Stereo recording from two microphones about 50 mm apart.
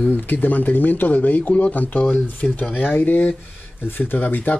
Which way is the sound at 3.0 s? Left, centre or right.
Left.